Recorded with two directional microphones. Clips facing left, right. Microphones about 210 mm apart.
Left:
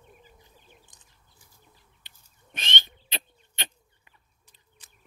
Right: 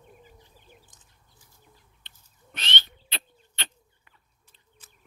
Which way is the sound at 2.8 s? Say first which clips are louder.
Left 1 dB; 15° left (ahead or behind).